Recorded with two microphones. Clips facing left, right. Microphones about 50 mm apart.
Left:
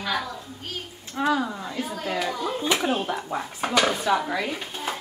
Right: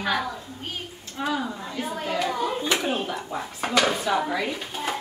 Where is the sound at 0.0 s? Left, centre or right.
Centre.